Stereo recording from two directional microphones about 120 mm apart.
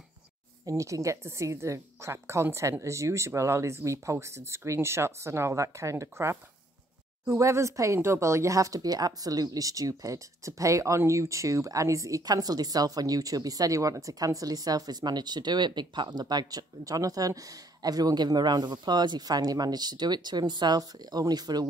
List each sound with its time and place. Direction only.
0.7 s speech: 25° right (ahead or behind)